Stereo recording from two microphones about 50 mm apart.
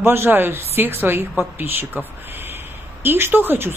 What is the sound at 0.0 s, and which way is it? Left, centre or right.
A woman's voice, right.